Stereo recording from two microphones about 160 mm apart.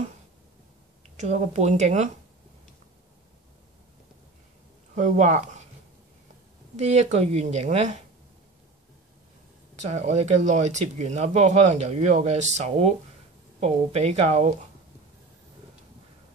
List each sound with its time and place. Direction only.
1.0 s speech: 45° right (ahead or behind)
4.9 s speech: 45° right (ahead or behind)
6.8 s speech: 45° right (ahead or behind)
9.8 s speech: 45° right (ahead or behind)